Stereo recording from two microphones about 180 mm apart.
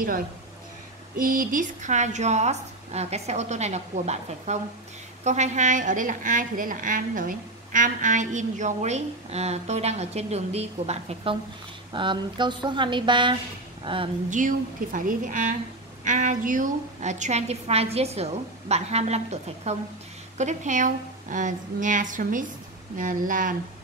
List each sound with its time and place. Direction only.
1.2 s a woman's voice: 50° right (ahead or behind); by 14.1 s 30° right (ahead or behind)
14.3 s a woman's voice: 45° right (ahead or behind)